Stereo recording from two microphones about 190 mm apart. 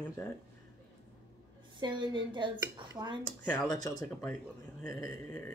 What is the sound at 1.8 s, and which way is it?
Speech, 25° right (ahead or behind).